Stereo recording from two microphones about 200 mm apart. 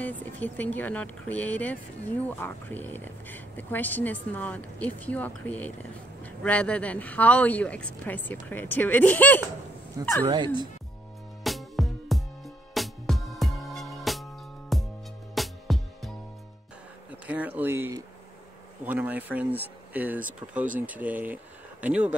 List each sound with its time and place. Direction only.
0.0 s speech: 10° left (ahead or behind)
10.2 s speech: 20° right (ahead or behind)
11.4 s music: centre (ahead or behind)
17.3 s a sound: 10° right (ahead or behind)
18.9 s speech: 10° right (ahead or behind)